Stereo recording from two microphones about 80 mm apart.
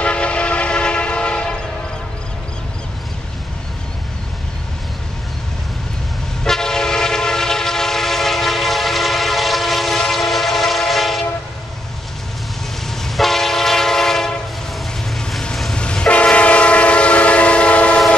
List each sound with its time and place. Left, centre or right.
0.0 s train: centre
6.4 s train: centre
12.9 s train: centre
15.1 s music: centre
15.8 s train: centre